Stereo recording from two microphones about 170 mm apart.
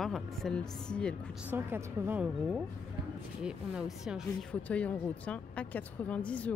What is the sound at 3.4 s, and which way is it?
Speech, 5° right (ahead or behind).